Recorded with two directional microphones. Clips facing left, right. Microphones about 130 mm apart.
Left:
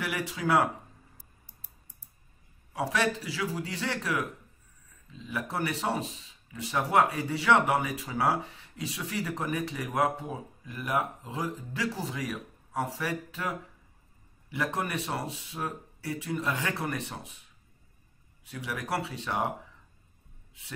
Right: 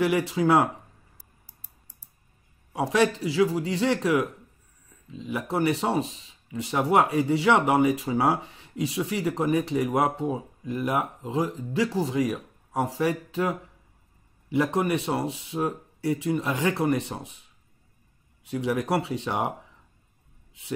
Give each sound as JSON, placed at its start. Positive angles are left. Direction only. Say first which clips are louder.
{"t": 0.0, "sound": "speech", "louder": "right 9 dB", "side_deg": -25}
{"t": 2.7, "sound": "speech", "louder": "right 6 dB", "side_deg": -20}
{"t": 18.5, "sound": "speech", "louder": "right 8 dB", "side_deg": -25}